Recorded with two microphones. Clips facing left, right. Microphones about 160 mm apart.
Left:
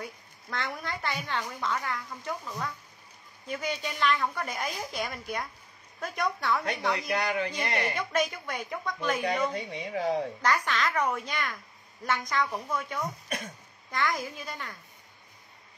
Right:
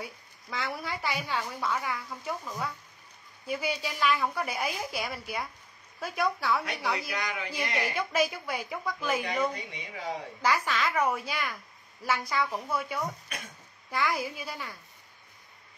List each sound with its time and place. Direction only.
0.0 s a woman's voice: 5° right (ahead or behind)
7.2 s speech: 35° left (ahead or behind)
7.9 s a woman's voice: 10° right (ahead or behind)
9.5 s speech: 50° left (ahead or behind)
10.4 s a woman's voice: 5° right (ahead or behind)